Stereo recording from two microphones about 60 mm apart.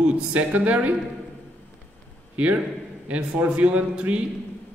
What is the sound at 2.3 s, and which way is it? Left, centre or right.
A man's voice, right.